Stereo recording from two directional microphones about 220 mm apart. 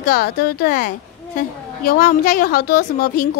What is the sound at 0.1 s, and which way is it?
A woman's voice, 45° left (ahead or behind).